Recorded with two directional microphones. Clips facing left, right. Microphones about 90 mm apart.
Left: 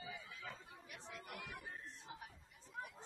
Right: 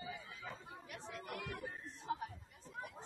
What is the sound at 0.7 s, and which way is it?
Chatter, 50° right (ahead or behind).